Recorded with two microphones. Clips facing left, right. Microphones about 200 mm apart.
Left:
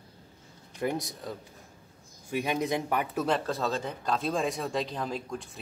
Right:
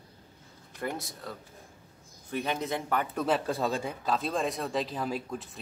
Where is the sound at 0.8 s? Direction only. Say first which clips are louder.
Left 4 dB; 15° left (ahead or behind).